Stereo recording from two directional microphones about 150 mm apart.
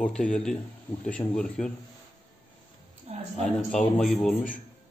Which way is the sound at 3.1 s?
50° right (ahead or behind).